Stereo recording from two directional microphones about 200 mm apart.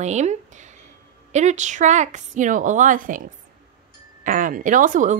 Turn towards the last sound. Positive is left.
turn(degrees=-40)  # may be behind; listen again after turning